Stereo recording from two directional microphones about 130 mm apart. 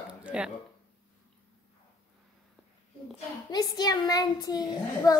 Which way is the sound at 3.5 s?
30° left (ahead or behind).